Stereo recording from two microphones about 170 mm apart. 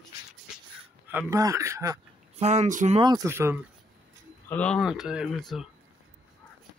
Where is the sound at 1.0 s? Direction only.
15° right (ahead or behind).